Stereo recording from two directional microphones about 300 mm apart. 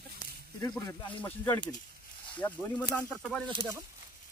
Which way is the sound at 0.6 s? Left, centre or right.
Centre.